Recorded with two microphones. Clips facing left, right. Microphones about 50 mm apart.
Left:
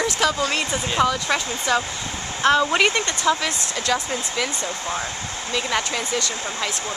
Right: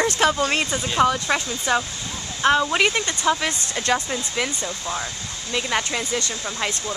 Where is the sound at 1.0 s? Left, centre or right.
Centre.